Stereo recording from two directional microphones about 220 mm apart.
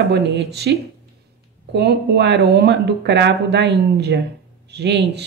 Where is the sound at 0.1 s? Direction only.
50° right (ahead or behind).